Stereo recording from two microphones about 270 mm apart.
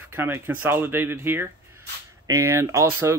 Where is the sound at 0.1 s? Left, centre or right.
Centre.